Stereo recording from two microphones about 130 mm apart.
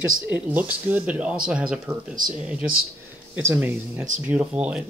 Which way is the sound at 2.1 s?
90° right.